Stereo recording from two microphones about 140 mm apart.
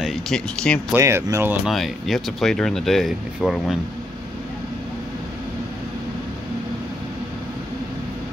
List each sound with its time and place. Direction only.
0.0 s speech: 5° left (ahead or behind)
0.9 s speech: 20° right (ahead or behind)
1.7 s speech: centre (ahead or behind)